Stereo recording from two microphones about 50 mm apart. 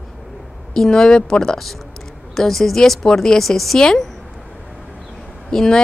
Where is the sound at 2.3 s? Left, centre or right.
Centre.